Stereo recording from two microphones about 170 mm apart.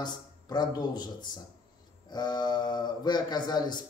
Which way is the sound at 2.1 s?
25° left (ahead or behind).